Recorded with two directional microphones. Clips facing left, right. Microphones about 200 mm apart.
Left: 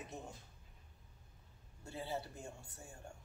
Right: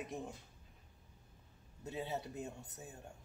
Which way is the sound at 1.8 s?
20° right (ahead or behind).